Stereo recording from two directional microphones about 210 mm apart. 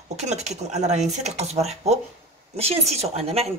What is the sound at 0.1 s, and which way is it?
Speech, 30° right (ahead or behind).